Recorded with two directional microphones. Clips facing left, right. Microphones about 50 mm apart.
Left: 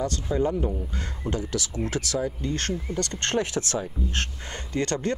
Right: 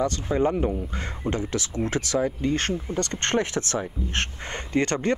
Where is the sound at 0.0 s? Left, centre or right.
Right.